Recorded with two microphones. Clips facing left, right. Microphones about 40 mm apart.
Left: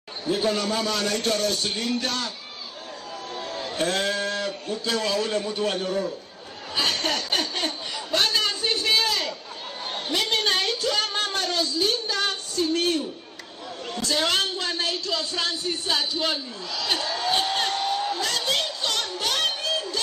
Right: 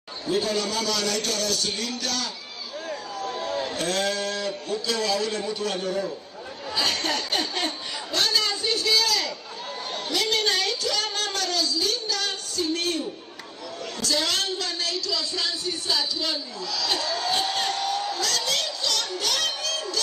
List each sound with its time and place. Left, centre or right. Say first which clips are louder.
0.3 s music: left 1 dB; left
3.7 s a man's voice: left 5 dB; left
6.7 s a sound: left 1 dB; left
13.9 s speech: left 2 dB; left